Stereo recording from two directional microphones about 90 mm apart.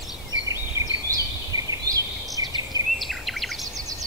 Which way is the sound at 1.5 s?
40° right (ahead or behind).